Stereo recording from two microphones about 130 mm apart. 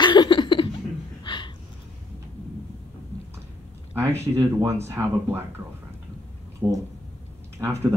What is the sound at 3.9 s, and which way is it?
Speech, 20° right (ahead or behind).